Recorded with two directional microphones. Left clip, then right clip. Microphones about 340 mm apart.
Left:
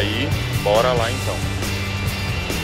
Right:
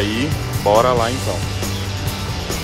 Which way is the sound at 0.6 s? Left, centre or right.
Centre.